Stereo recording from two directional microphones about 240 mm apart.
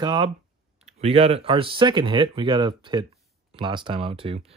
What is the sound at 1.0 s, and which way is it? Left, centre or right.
Speech, right.